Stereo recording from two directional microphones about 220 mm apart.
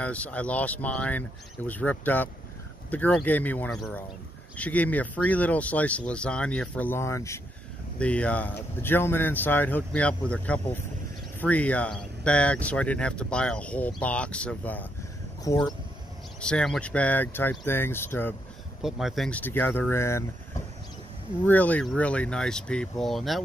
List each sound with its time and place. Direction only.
0.0 s speech: 5° left (ahead or behind)
16.3 s speech: 5° left (ahead or behind)
18.8 s speech: centre (ahead or behind)